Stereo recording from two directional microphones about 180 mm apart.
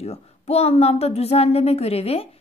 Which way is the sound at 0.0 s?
35° left (ahead or behind).